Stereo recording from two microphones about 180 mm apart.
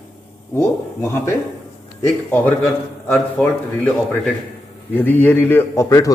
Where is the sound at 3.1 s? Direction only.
5° left (ahead or behind).